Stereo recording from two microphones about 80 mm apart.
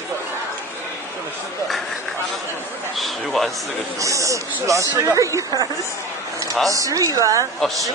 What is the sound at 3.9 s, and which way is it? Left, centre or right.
Speech, right.